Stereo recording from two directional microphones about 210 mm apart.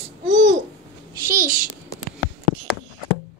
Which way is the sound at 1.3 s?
40° right (ahead or behind).